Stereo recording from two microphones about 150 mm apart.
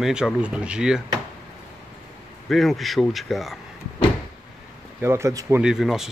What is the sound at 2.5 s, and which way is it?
Speech, centre (ahead or behind).